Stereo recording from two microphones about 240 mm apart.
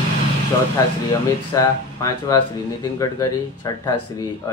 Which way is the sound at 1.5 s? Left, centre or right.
Centre.